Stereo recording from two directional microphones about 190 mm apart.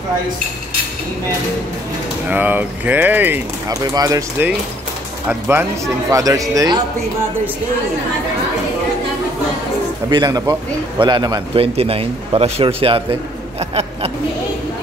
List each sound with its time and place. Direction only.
2.2 s a man's voice: 10° right (ahead or behind)
10.0 s a man's voice: 20° right (ahead or behind)